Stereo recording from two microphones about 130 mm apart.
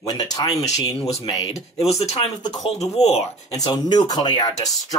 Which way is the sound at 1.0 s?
55° left (ahead or behind).